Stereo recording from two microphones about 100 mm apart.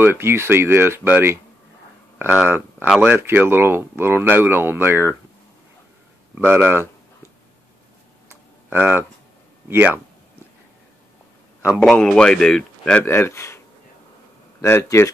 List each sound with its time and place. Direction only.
0.0 s speech: 25° right (ahead or behind)
6.3 s speech: 15° right (ahead or behind)
8.6 s speech: 20° right (ahead or behind)
11.8 s a man's voice: 5° left (ahead or behind)
13.0 s speech: 25° left (ahead or behind)
14.6 s speech: 30° left (ahead or behind)